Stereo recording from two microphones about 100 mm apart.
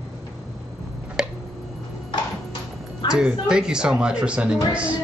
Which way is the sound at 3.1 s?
5° right (ahead or behind).